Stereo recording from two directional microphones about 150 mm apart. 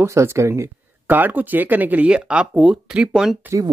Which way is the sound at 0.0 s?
20° right (ahead or behind).